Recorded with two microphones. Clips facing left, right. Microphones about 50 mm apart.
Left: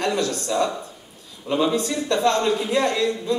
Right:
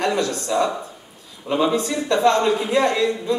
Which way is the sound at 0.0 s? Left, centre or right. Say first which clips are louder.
Right 2 dB; centre.